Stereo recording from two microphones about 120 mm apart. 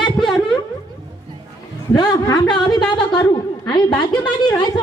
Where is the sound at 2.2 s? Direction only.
35° left (ahead or behind).